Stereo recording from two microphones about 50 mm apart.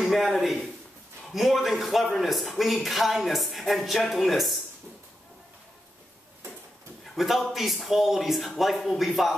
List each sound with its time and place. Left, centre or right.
0.0 s a man's voice: centre
7.2 s a man's voice: centre